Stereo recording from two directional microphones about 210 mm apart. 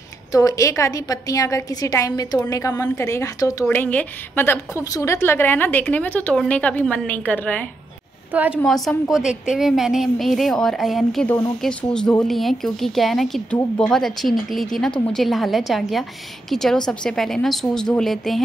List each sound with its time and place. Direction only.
0.3 s a woman's voice: 15° left (ahead or behind)
8.3 s speech: 5° right (ahead or behind)